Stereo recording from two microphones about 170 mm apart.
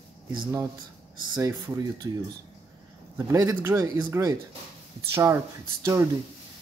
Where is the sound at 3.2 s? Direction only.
20° right (ahead or behind).